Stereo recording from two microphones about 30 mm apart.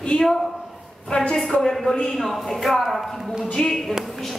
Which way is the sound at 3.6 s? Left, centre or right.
Left.